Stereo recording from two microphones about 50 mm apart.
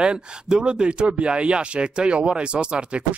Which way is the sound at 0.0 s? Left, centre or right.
Centre.